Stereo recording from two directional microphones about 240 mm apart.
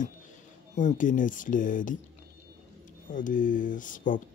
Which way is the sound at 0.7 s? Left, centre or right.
Left.